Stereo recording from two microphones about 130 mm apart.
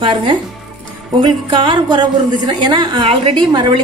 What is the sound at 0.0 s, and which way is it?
A woman's voice, 40° right (ahead or behind).